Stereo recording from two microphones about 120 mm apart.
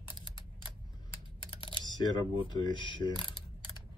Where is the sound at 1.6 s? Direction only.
40° left (ahead or behind).